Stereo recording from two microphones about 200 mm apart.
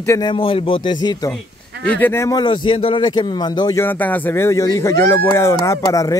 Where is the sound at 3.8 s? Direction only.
10° left (ahead or behind).